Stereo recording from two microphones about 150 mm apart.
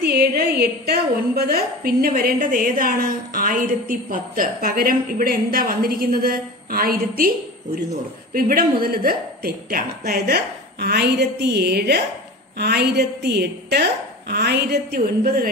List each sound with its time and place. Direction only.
0.0 s a sound: 90° right
0.6 s a woman's voice: 90° right
2.5 s a woman's voice: 70° right (ahead or behind); by 15.4 s 85° right